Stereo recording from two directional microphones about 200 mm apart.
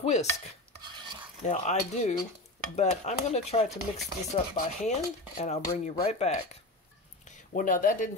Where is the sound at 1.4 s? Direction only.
35° left (ahead or behind).